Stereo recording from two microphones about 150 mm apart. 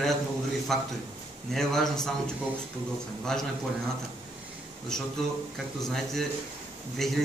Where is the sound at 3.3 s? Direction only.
5° left (ahead or behind).